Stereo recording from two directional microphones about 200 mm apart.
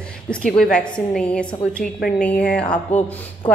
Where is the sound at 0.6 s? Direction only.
5° left (ahead or behind).